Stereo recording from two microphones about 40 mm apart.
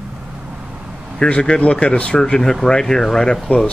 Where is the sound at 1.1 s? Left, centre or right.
Left.